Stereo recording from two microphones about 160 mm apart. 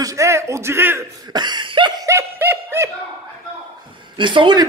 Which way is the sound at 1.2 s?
25° right (ahead or behind).